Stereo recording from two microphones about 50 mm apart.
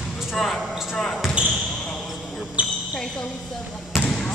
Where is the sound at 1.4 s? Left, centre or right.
Right.